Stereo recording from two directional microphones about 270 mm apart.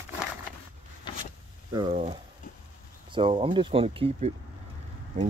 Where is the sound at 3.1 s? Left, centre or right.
Centre.